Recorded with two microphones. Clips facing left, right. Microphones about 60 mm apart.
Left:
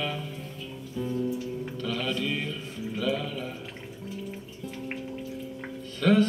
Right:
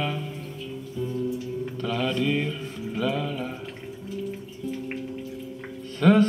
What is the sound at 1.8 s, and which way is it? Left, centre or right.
Mantra, centre.